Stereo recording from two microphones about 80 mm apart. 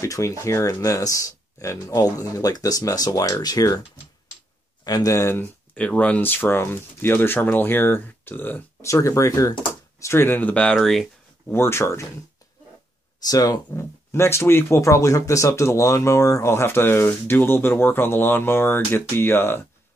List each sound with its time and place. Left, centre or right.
0.0 s speech: left
4.8 s speech: left
5.2 s speech: left
5.8 s speech: centre
8.8 s speech: left; by 10.8 s centre
10.8 s speech: centre
11.4 s speech: left
13.2 s speech: left
13.7 s speech: left